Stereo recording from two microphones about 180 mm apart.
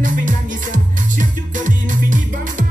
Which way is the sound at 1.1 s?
45° right (ahead or behind).